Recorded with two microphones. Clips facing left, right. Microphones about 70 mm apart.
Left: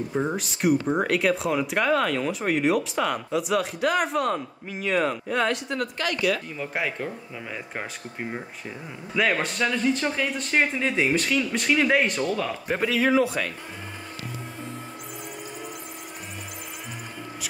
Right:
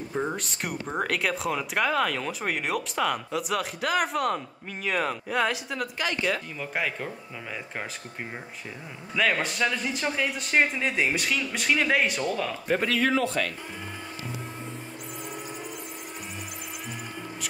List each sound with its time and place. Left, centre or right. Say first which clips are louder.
0.1 s speech: even; centre
6.0 s speech: left 3 dB; right
6.6 s speech: left 2 dB; centre